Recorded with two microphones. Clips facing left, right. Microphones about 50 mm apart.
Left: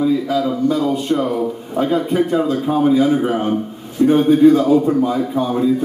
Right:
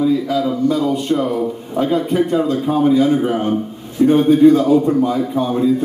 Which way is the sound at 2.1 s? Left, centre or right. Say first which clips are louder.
Right 1 dB; centre.